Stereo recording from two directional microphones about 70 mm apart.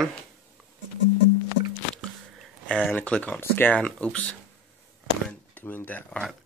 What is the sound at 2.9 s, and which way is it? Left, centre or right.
Speech, centre.